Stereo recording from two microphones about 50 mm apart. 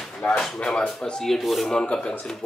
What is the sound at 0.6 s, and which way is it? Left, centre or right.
Speech, centre.